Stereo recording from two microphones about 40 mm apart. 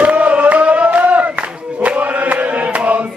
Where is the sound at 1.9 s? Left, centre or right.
Right.